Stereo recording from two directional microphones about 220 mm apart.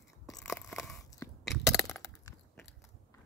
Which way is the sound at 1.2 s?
15° left (ahead or behind).